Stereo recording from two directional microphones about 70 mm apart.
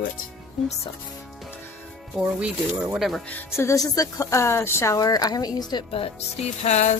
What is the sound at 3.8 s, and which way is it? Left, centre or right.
Speech, left.